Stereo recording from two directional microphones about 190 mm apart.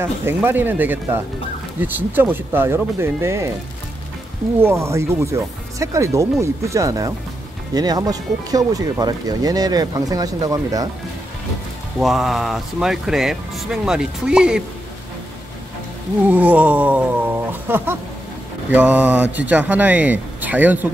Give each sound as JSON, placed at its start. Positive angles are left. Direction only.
{"t": 0.0, "sound": "speech", "side_deg": -10}
{"t": 4.6, "sound": "speech", "side_deg": -15}
{"t": 12.0, "sound": "speech", "side_deg": 0}
{"t": 16.3, "sound": "speech", "side_deg": -5}